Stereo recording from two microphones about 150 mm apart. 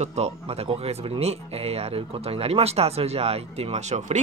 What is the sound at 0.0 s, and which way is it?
Speech, 45° right (ahead or behind).